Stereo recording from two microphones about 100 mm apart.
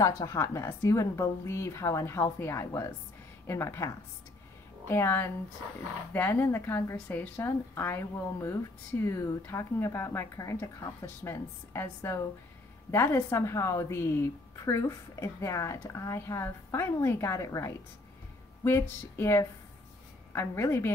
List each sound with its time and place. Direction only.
0.0 s a woman's voice: 35° left (ahead or behind)